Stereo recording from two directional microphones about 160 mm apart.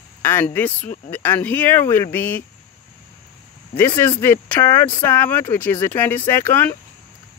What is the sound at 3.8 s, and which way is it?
Speech, 15° left (ahead or behind).